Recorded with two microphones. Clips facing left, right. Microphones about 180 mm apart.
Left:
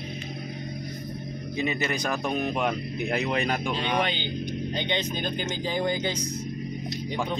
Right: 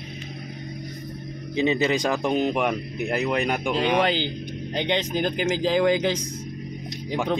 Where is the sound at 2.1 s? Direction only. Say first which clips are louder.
Right 5 dB; 20° right (ahead or behind).